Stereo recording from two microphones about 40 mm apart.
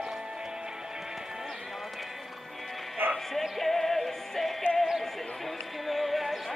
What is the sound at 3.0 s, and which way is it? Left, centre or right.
Music, right.